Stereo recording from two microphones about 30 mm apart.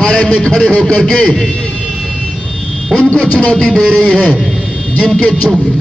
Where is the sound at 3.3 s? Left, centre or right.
Left.